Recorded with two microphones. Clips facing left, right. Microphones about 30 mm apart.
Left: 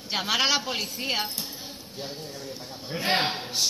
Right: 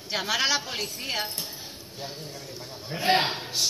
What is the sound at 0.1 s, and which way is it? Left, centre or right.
A woman's voice, left.